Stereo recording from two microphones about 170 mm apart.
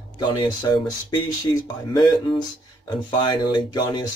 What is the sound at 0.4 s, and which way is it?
Speech, 25° left (ahead or behind).